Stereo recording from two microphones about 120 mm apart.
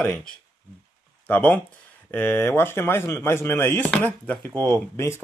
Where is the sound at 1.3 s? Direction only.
15° left (ahead or behind).